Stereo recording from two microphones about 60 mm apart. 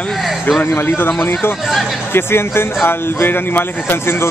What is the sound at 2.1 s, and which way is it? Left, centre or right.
Speech, left.